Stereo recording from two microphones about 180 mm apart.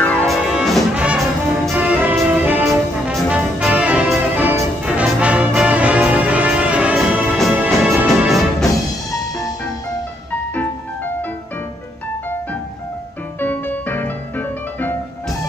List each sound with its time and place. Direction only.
0.0 s music: 5° left (ahead or behind)
1.7 s brass instrument: 5° right (ahead or behind)
13.4 s music: 10° left (ahead or behind)